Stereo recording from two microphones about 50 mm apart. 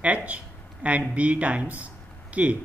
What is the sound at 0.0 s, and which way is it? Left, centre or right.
Speech, right.